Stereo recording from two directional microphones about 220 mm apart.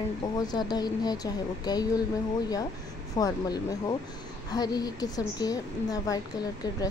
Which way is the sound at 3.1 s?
15° left (ahead or behind).